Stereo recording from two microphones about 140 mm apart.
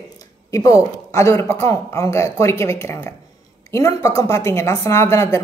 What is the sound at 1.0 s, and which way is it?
Speech, 20° left (ahead or behind).